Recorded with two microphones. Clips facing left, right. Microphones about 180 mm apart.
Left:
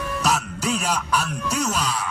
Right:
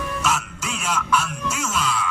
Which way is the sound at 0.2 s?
40° left (ahead or behind).